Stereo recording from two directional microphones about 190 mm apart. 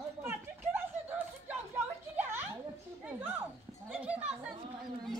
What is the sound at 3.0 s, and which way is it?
Chatter, 10° right (ahead or behind).